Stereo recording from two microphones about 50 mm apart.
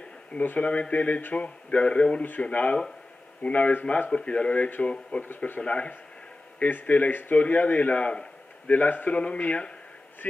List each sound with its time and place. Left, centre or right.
0.4 s speech: left
6.6 s a man's voice: left
8.6 s a man's voice: left
9.1 s speech: left